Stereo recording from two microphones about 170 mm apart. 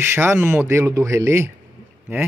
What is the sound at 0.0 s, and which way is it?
Speech, 15° right (ahead or behind).